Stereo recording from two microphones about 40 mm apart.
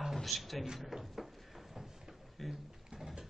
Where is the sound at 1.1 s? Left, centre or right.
Centre.